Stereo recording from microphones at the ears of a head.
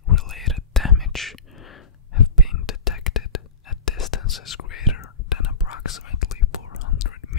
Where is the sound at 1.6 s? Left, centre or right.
Left.